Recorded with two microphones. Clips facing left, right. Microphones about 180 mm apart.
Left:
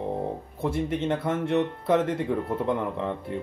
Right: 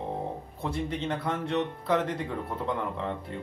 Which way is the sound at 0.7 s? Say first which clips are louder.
Left 5 dB; 25° left (ahead or behind).